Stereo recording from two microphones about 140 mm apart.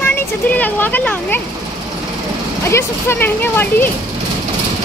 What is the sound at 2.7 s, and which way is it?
Speech, 15° left (ahead or behind).